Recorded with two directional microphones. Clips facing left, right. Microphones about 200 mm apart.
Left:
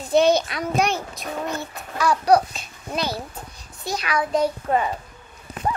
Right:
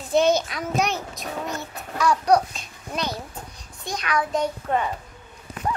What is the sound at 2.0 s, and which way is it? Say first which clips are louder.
A child's voice: left 1 dB; 5° left (ahead or behind).